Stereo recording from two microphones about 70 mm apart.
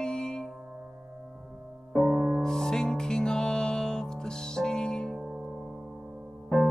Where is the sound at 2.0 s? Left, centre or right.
Right.